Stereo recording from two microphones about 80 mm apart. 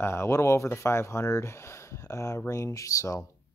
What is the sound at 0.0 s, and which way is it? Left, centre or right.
Speech, left.